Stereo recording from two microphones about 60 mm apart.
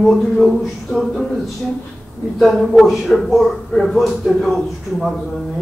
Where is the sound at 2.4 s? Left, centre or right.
Centre.